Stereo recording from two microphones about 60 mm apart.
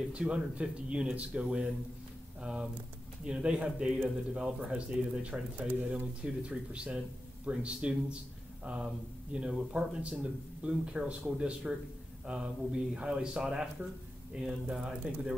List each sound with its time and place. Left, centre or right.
0.1 s speech: right
6.4 s speech: centre